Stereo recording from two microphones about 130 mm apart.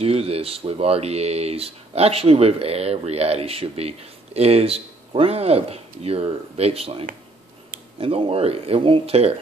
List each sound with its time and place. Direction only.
0.0 s speech: 50° right (ahead or behind)